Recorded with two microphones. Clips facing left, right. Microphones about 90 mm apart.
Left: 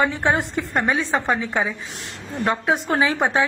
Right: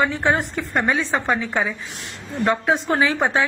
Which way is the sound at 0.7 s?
5° left (ahead or behind).